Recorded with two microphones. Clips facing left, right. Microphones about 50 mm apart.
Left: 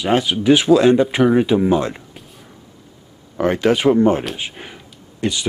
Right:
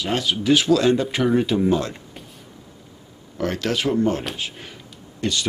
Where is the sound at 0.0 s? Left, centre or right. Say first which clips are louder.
Left 6 dB; centre.